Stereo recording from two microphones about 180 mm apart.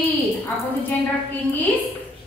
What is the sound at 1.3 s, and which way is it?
Speech, 10° left (ahead or behind).